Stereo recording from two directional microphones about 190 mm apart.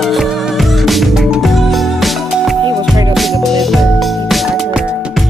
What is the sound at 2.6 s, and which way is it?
Music, 25° right (ahead or behind).